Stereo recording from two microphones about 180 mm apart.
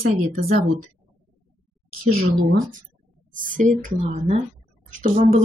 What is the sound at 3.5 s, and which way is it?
Speech, 45° right (ahead or behind).